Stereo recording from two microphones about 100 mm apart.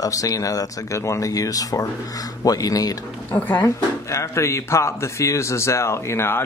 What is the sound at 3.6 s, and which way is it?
Speech, 30° left (ahead or behind).